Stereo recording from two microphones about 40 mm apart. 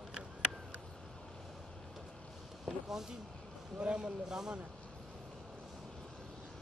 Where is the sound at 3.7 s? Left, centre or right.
Right.